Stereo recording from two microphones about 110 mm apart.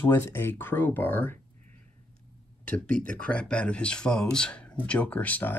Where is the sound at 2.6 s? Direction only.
10° left (ahead or behind).